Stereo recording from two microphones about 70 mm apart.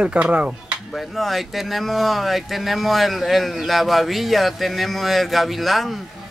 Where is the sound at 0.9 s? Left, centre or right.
Centre.